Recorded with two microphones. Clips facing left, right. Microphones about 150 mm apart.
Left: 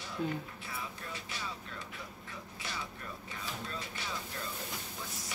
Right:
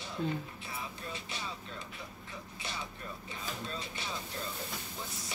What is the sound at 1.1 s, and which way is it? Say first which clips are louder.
Vehicle: right 1 dB; 25° right (ahead or behind).